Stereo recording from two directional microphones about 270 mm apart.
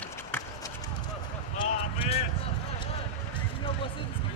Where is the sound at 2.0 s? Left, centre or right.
Left.